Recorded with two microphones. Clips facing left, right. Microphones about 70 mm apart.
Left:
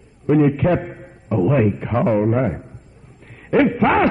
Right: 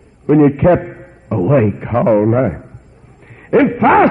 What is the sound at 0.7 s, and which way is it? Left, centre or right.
A man's voice, right.